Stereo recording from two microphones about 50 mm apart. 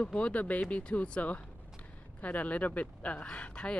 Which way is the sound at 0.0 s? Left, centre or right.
Left.